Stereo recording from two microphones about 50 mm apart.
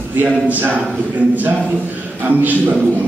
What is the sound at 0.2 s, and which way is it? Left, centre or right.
Speech, right.